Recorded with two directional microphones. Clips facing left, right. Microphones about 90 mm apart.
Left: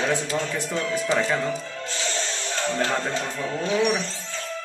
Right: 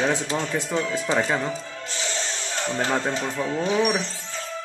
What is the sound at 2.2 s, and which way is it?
Music, 20° right (ahead or behind).